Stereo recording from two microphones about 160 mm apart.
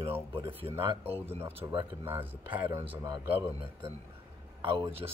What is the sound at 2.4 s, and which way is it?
A man's voice, 30° right (ahead or behind).